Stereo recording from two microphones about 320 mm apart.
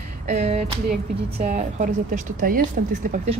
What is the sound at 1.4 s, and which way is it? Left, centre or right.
A woman's voice, right.